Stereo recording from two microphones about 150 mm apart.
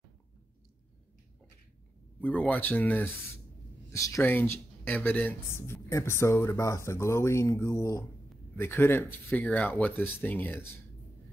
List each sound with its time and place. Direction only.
2.1 s speech: 10° left (ahead or behind)